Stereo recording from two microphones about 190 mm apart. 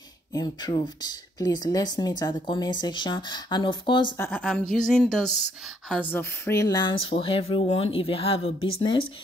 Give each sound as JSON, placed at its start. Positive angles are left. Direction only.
{"t": 0.3, "sound": "speech", "side_deg": 20}
{"t": 4.2, "sound": "a woman's voice", "side_deg": 5}